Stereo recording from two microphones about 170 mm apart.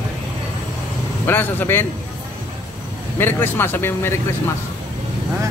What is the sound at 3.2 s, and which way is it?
Speech, 15° left (ahead or behind).